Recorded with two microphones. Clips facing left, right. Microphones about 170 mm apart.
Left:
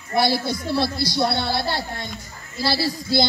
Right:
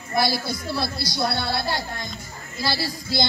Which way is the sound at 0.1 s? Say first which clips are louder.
Left 3 dB; 30° left (ahead or behind).